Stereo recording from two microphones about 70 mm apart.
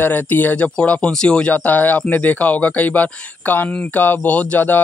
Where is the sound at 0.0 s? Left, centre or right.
Left.